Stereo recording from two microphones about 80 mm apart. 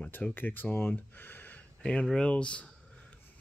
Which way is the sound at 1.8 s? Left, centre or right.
Centre.